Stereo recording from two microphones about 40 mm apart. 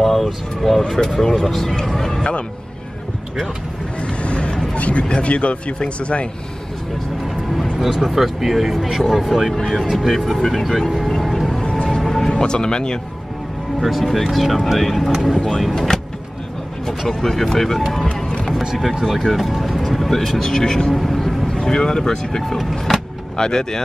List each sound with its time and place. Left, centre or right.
0.0 s speech: centre
4.0 s a sound: left
4.7 s speech: left
7.9 s speech: centre
11.2 s music: centre
12.3 s speech: centre
13.7 s speech: centre
17.1 s speech: centre
18.3 s music: centre
19.3 s speech: centre
20.9 s music: centre
21.5 s speech: centre
23.3 s speech: centre